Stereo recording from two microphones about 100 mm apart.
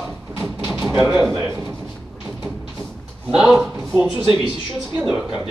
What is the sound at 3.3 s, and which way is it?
Speech, 5° right (ahead or behind).